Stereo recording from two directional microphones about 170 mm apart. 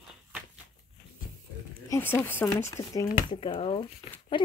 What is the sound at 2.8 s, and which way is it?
Speech, 30° left (ahead or behind).